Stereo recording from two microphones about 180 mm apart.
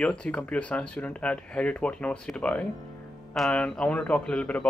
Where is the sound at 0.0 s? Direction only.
5° left (ahead or behind).